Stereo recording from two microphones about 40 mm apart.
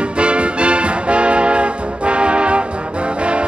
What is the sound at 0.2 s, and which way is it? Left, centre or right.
Music, right.